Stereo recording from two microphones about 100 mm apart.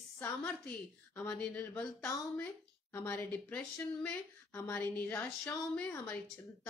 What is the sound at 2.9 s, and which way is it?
A woman's voice, 20° left (ahead or behind).